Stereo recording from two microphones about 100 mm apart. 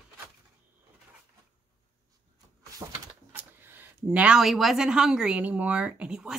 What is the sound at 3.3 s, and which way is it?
Speech, 20° right (ahead or behind).